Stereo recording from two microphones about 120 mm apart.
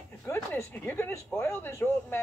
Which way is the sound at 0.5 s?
20° left (ahead or behind).